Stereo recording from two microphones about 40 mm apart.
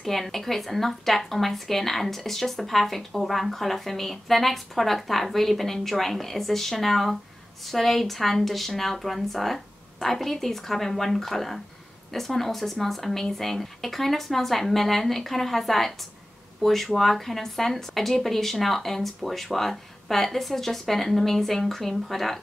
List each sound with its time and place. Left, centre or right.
0.0 s a woman's voice: centre